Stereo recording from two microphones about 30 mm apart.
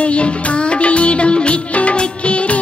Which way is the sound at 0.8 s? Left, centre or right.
Left.